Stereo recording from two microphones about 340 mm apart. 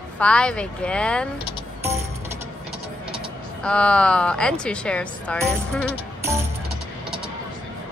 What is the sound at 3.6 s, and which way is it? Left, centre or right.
Speech, centre.